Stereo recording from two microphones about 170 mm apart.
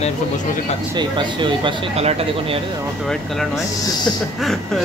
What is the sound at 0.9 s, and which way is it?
Speech, 30° right (ahead or behind).